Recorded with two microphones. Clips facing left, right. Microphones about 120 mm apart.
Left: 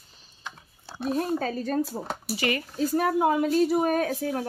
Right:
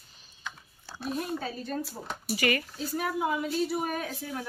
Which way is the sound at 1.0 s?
40° left (ahead or behind).